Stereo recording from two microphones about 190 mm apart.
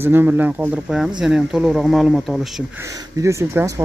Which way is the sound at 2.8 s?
15° right (ahead or behind).